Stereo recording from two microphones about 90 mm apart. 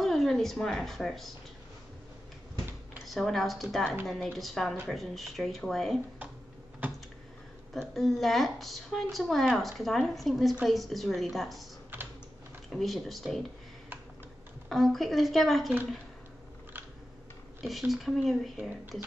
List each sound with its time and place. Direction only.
0.0 s speech: 5° left (ahead or behind)
3.1 s a woman's voice: centre (ahead or behind)
7.9 s a woman's voice: centre (ahead or behind)
11.9 s typing: 20° right (ahead or behind)
12.6 s a woman's voice: centre (ahead or behind)
14.7 s a woman's voice: centre (ahead or behind)
17.6 s a woman's voice: centre (ahead or behind)